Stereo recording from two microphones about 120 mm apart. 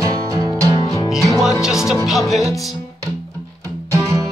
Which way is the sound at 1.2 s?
Centre (ahead or behind).